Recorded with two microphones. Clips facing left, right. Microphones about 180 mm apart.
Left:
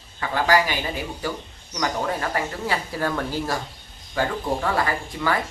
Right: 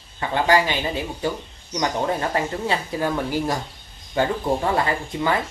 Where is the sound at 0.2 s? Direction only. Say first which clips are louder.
Right 1 dB; 25° right (ahead or behind).